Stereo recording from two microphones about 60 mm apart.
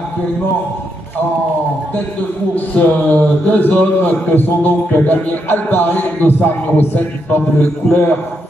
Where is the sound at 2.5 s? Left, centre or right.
Left.